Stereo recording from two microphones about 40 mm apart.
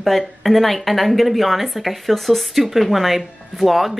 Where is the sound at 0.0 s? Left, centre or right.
Centre.